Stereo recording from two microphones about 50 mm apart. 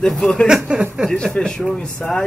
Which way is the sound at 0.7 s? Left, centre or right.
Right.